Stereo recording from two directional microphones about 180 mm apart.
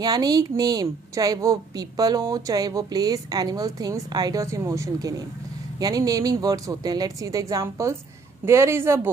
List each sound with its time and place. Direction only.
0.0 s a woman's voice: 20° right (ahead or behind)